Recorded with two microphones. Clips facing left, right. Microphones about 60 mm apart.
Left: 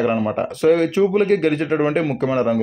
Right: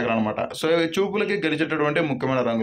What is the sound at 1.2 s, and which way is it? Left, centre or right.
Speech, right.